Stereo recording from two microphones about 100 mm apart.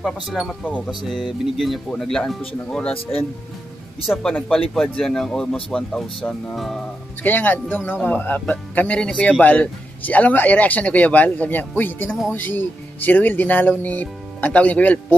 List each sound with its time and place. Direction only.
0.0 s speech: centre (ahead or behind)
2.9 s speech: 70° left (ahead or behind)
4.2 s speech: 5° left (ahead or behind)
7.2 s speech: 20° left (ahead or behind)
12.1 s speech: 5° right (ahead or behind)
12.4 s speech: 20° left (ahead or behind)